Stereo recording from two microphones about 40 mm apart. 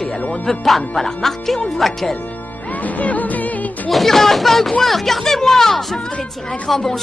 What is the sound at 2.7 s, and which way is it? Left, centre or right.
Speech, left.